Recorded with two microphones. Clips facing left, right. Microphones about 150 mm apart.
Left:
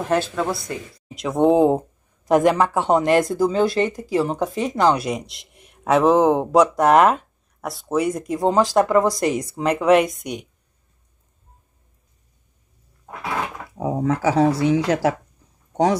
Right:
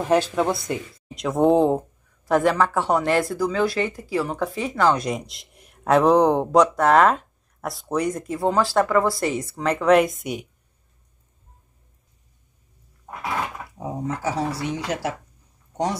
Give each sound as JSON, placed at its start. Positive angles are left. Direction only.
{"t": 0.0, "sound": "speech", "side_deg": -15}
{"t": 1.1, "sound": "speech", "side_deg": 0}
{"t": 1.7, "sound": "speech", "side_deg": 15}
{"t": 4.9, "sound": "speech", "side_deg": 0}
{"t": 7.2, "sound": "speech", "side_deg": 0}
{"t": 9.9, "sound": "speech", "side_deg": 0}
{"t": 13.7, "sound": "speech", "side_deg": 90}